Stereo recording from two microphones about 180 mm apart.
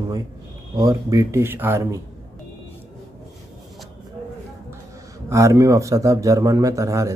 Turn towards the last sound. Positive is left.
turn(degrees=-15)  # may be behind; listen again after turning